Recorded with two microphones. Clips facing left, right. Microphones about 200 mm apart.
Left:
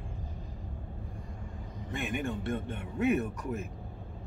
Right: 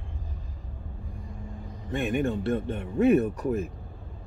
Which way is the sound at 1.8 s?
35° right (ahead or behind).